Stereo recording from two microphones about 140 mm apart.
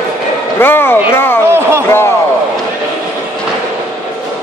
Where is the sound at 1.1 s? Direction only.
15° left (ahead or behind).